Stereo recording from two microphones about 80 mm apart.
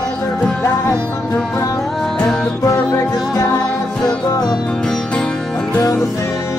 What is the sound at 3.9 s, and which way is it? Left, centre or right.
Music, centre.